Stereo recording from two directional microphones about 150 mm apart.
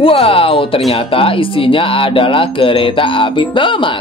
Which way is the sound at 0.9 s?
35° left (ahead or behind).